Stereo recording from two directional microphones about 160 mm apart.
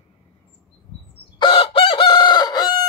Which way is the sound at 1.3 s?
35° left (ahead or behind).